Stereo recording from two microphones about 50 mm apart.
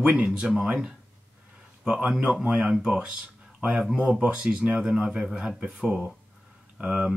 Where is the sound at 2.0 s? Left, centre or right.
Right.